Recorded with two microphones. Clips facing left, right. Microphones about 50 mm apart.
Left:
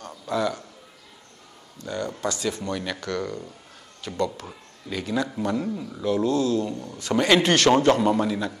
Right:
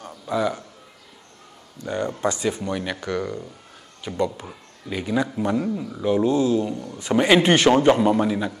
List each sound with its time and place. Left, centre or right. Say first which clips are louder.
0.3 s speech: right 2 dB; centre
1.8 s speech: right 4 dB; right